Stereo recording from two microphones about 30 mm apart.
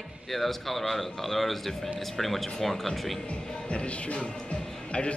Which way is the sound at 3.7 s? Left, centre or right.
Left.